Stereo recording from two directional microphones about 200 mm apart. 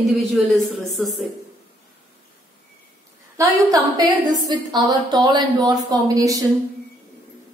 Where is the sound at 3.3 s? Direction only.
15° right (ahead or behind).